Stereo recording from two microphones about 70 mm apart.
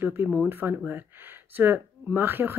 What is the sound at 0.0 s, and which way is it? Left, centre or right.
Speech, right.